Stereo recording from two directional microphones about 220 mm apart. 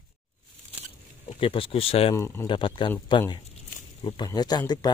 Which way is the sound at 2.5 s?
20° left (ahead or behind).